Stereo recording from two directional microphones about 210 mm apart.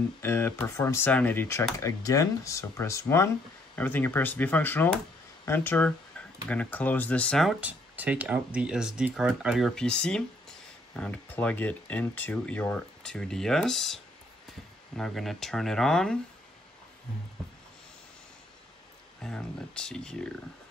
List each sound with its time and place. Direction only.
0.2 s speech: 10° left (ahead or behind)
19.2 s speech: 5° left (ahead or behind)